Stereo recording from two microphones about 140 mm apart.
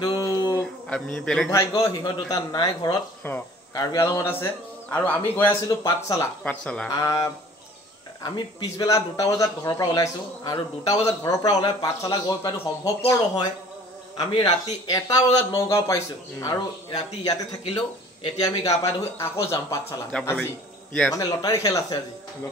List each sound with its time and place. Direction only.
0.0 s a sound: 25° left (ahead or behind)
0.6 s a sound: 5° left (ahead or behind)
1.5 s a man's voice: 20° left (ahead or behind)
3.2 s speech: 10° left (ahead or behind)
3.7 s a man's voice: 25° left (ahead or behind)
5.7 s a man's voice: 25° left (ahead or behind)
6.4 s speech: 10° left (ahead or behind)
6.9 s a man's voice: 25° left (ahead or behind)
14.1 s a man's voice: 30° left (ahead or behind)
20.1 s speech: 5° left (ahead or behind)
21.1 s a man's voice: 25° left (ahead or behind)